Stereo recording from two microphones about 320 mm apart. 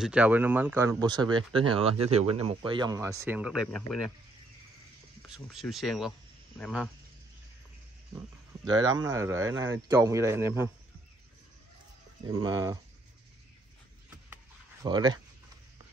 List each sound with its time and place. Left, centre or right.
0.0 s speech: centre
5.3 s speech: centre
8.6 s speech: centre
12.3 s speech: centre
14.3 s a sound: centre